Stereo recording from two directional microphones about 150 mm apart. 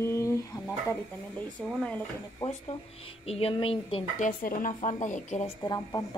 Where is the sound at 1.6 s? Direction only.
5° left (ahead or behind).